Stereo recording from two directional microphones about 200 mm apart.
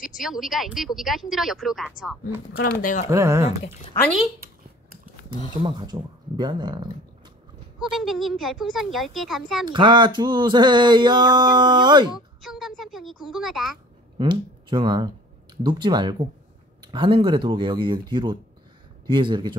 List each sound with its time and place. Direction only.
0.0 s speech: centre (ahead or behind)
2.5 s speech: 45° left (ahead or behind)
3.1 s speech: 15° right (ahead or behind)
5.6 s a sound: 25° right (ahead or behind)
7.9 s speech: centre (ahead or behind)
9.7 s a sound: 25° right (ahead or behind)
12.4 s speech: centre (ahead or behind)
14.1 s speech: 25° right (ahead or behind)
15.5 s a sound: 20° right (ahead or behind)